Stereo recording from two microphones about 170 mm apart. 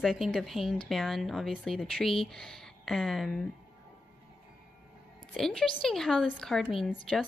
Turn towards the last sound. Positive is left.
turn(degrees=0)  # may be behind; listen again after turning